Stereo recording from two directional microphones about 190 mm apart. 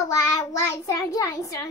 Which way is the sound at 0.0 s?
20° left (ahead or behind).